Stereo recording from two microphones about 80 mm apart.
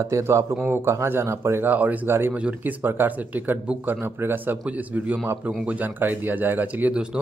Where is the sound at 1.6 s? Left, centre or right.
Right.